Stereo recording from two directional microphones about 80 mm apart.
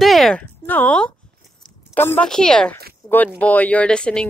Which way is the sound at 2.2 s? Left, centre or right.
Centre.